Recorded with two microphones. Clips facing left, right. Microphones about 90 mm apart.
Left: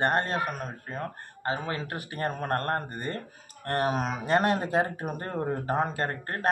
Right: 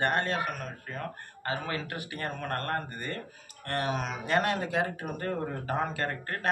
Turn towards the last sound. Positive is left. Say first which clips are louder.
# left 2 dB
turn(degrees=35)  # may be behind; listen again after turning